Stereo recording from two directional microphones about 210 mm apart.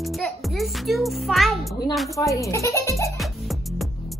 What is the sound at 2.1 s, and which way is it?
A child's voice, 15° left (ahead or behind).